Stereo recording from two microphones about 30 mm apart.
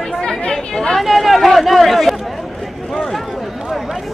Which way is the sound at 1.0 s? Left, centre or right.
Centre.